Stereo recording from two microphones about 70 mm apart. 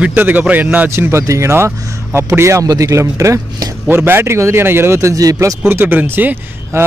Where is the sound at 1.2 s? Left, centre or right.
Right.